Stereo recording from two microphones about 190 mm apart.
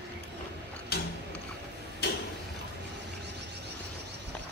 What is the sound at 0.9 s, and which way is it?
Tick-tock, 55° left (ahead or behind).